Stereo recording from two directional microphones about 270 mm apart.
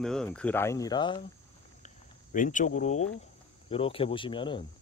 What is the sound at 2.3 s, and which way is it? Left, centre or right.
Speech, left.